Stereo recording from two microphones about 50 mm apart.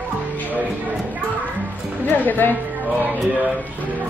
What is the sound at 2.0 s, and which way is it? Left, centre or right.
Music, left.